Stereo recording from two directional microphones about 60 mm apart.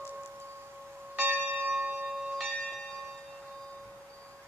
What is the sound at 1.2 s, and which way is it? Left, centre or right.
Church bell, right.